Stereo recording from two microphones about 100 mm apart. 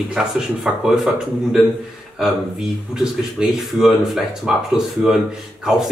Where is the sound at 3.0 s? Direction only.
5° right (ahead or behind).